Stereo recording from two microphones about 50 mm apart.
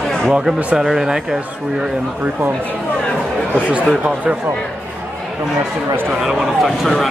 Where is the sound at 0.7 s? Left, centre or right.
Centre.